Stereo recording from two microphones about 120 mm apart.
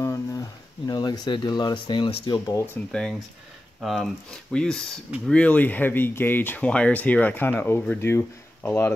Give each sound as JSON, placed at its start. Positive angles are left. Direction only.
{"t": 0.0, "sound": "a sound", "side_deg": 30}
{"t": 2.2, "sound": "speech", "side_deg": 35}
{"t": 2.9, "sound": "speech", "side_deg": 5}